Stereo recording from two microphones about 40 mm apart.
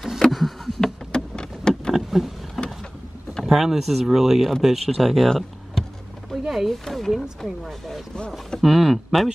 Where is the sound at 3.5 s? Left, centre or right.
Centre.